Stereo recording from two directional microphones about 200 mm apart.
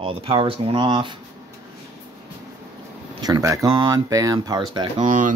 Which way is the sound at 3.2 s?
20° right (ahead or behind).